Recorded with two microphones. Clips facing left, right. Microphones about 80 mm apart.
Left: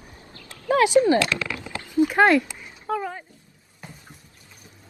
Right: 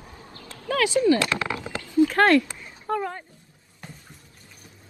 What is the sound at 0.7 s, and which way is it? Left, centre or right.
Speech, left.